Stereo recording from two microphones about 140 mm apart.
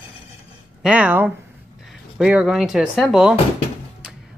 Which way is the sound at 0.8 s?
10° right (ahead or behind).